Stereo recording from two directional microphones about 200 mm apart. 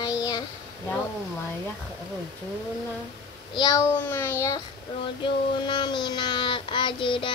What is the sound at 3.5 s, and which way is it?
Speech, 15° left (ahead or behind).